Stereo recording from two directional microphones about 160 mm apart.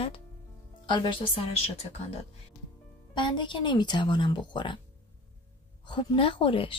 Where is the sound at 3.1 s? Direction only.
30° left (ahead or behind).